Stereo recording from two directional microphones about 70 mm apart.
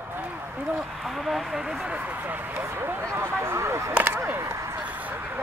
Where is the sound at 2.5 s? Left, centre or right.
Right.